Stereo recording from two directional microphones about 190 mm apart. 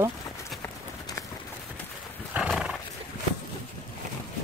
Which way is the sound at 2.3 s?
5° right (ahead or behind).